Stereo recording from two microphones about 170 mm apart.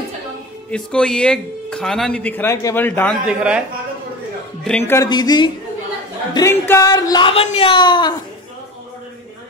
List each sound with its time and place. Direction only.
0.7 s speech: 5° left (ahead or behind)
3.3 s speech: 5° right (ahead or behind)
4.6 s speech: 10° left (ahead or behind); by 8.1 s 25° left (ahead or behind)